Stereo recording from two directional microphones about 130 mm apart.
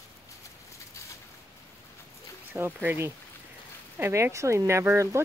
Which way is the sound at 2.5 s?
15° right (ahead or behind).